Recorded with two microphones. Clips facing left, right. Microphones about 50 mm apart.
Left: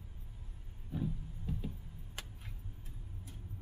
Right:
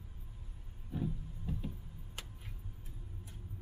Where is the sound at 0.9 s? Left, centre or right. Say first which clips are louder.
Even; centre.